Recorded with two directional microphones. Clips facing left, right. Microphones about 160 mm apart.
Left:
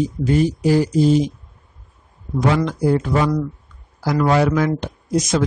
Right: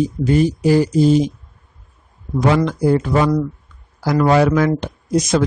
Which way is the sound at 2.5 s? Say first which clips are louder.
Right 2 dB; 65° right (ahead or behind).